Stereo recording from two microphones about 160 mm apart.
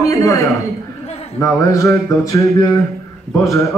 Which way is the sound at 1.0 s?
40° left (ahead or behind).